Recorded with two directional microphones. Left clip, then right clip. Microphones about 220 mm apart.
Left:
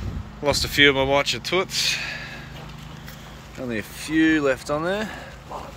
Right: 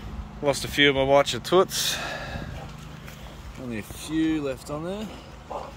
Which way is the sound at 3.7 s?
Centre (ahead or behind).